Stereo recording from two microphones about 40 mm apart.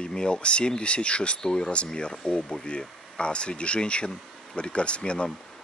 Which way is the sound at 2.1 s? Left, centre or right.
Centre.